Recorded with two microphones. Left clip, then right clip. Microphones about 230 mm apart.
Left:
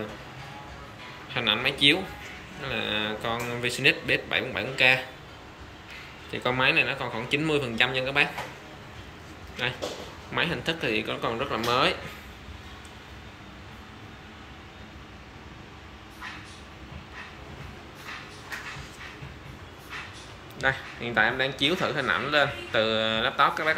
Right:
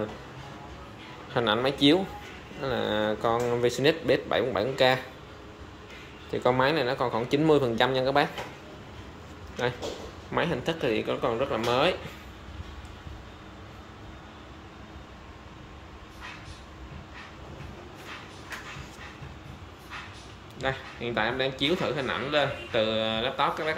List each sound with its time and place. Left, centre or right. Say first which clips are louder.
1.3 s a man's voice: even; right
6.3 s a man's voice: left 1 dB; centre
10.3 s a man's voice: even; centre
20.5 s a man's voice: left 4 dB; centre